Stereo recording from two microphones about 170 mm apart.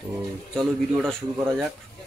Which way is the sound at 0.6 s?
Centre (ahead or behind).